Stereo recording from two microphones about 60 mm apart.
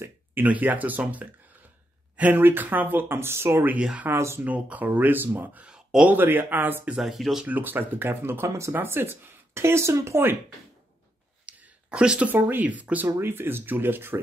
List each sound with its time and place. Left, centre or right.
0.0 s a sound: right
0.5 s speech: right
4.5 s speech: right
5.7 s a sound: centre
6.0 s speech: right
7.0 s speech: centre
7.4 s speech: right
11.4 s a sound: centre
12.3 s speech: right
13.2 s speech: right